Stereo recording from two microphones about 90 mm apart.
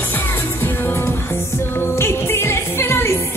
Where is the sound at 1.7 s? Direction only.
30° left (ahead or behind).